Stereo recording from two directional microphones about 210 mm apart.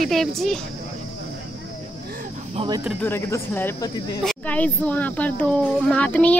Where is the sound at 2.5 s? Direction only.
20° right (ahead or behind).